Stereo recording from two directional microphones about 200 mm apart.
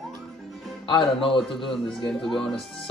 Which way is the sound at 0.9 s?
25° left (ahead or behind).